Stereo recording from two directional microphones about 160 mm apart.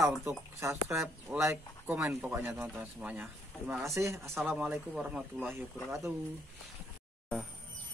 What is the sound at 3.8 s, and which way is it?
Speech, 20° right (ahead or behind).